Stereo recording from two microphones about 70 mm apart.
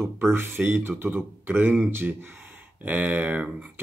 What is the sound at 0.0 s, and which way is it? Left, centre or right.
Speech, right.